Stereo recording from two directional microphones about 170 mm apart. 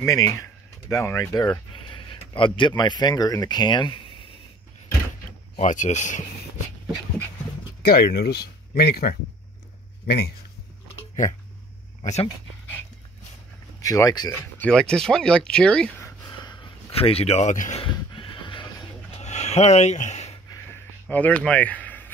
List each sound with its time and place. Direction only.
0.0 s speech: 20° left (ahead or behind)
5.6 s speech: 45° left (ahead or behind)
7.8 s speech: 65° left (ahead or behind)
12.0 s speech: 40° left (ahead or behind)
13.7 s speech: 20° left (ahead or behind)
14.6 s speech: 5° left (ahead or behind)
16.0 s a sound: 25° left (ahead or behind); by 17.8 s 45° left (ahead or behind)
17.8 s horse: 30° left (ahead or behind)
19.1 s a sound: 40° left (ahead or behind)
20.7 s a sound: 10° left (ahead or behind)